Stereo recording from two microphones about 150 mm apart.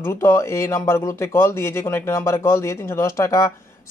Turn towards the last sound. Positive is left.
turn(degrees=20)  # may be behind; listen again after turning